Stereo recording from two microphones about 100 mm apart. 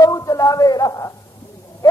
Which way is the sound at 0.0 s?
35° left (ahead or behind).